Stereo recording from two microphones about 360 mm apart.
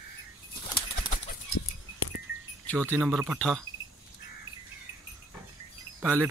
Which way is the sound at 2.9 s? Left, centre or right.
Centre.